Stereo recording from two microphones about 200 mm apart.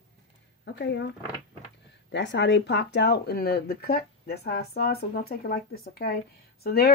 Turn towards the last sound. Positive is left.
turn(degrees=50)  # may be behind; listen again after turning